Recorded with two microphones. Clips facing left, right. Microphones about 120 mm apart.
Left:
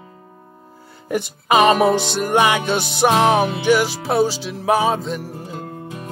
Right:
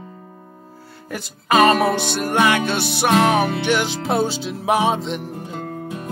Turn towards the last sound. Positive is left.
turn(degrees=0)  # may be behind; listen again after turning